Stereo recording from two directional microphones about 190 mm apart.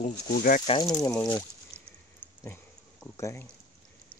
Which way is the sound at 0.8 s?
15° left (ahead or behind).